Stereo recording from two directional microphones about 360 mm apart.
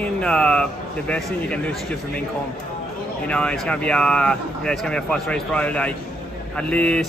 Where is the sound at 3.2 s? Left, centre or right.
Centre.